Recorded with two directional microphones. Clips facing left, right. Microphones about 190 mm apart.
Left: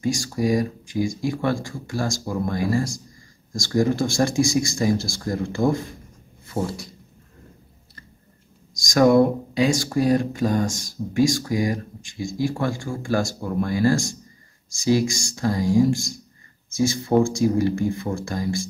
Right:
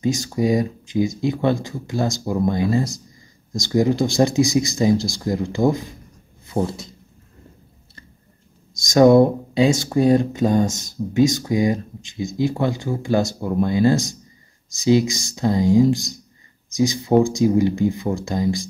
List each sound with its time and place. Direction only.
0.0 s speech: 20° right (ahead or behind)
6.4 s a sound: 20° right (ahead or behind)
8.8 s speech: 25° right (ahead or behind)